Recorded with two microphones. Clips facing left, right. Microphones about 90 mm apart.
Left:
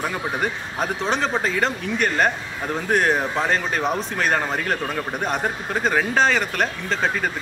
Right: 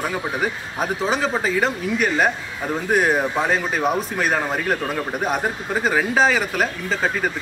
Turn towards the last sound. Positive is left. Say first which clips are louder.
# right 1 dB
turn(degrees=-5)  # may be behind; listen again after turning